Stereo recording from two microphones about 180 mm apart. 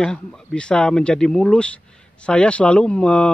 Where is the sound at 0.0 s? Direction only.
5° left (ahead or behind).